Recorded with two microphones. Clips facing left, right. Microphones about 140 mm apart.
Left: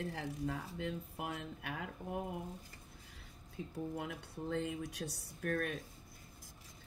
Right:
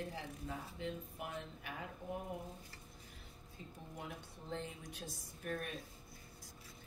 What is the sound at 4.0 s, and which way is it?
Speech, 90° left.